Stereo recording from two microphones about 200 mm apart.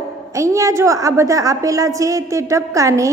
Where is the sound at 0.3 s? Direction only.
15° right (ahead or behind).